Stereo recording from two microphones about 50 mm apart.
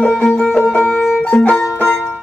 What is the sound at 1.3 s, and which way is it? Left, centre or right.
Music, left.